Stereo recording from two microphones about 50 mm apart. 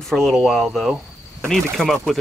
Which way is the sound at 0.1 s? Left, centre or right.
Centre.